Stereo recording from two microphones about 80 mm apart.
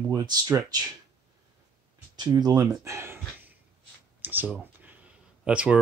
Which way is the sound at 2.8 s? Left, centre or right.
Right.